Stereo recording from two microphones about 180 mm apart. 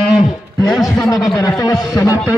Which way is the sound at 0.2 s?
20° left (ahead or behind).